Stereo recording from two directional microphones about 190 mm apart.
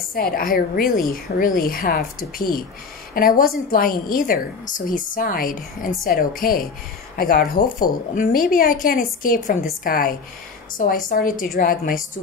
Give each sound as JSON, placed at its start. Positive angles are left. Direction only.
{"t": 0.1, "sound": "a woman's voice", "side_deg": 50}